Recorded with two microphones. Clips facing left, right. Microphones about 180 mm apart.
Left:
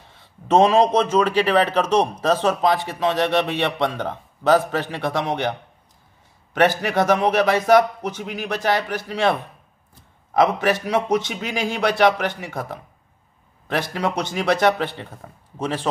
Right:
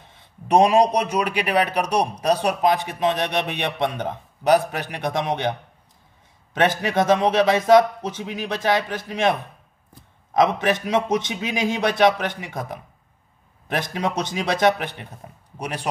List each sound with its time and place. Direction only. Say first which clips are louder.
0.5 s a man's voice: left 1 dB; 15° right (ahead or behind)
6.5 s a man's voice: left 2 dB; 20° right (ahead or behind)